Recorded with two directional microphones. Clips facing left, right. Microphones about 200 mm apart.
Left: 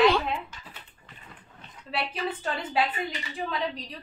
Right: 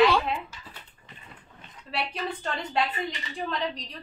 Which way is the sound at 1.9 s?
Centre (ahead or behind).